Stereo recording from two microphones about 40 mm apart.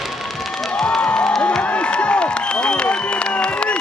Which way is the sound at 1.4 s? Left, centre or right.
Left.